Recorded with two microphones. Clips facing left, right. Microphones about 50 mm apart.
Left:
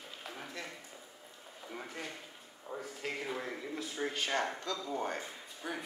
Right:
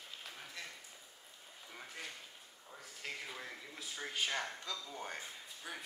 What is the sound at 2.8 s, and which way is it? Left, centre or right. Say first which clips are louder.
Speech: left 5 dB; centre.